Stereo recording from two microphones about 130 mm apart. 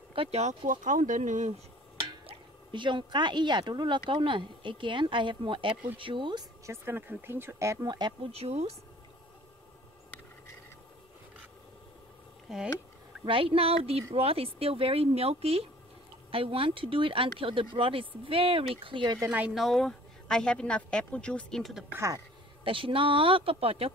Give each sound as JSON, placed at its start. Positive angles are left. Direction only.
{"t": 0.1, "sound": "a sound", "side_deg": -45}
{"t": 0.7, "sound": "speech", "side_deg": -80}
{"t": 2.2, "sound": "speech", "side_deg": -40}
{"t": 6.6, "sound": "speech", "side_deg": -20}
{"t": 8.3, "sound": "speech", "side_deg": -50}
{"t": 12.5, "sound": "speech", "side_deg": 0}
{"t": 13.2, "sound": "speech", "side_deg": -40}
{"t": 19.5, "sound": "speech", "side_deg": 0}
{"t": 21.9, "sound": "speech", "side_deg": -25}
{"t": 22.6, "sound": "speech", "side_deg": -40}